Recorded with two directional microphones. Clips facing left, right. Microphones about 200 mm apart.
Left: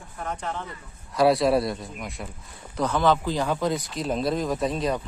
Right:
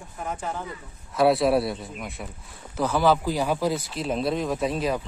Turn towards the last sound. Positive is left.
turn(degrees=-5)  # may be behind; listen again after turning